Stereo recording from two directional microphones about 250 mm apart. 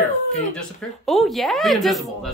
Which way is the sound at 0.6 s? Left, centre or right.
Centre.